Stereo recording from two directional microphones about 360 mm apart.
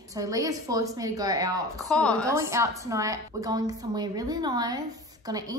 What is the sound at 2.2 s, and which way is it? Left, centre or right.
A woman's voice, centre.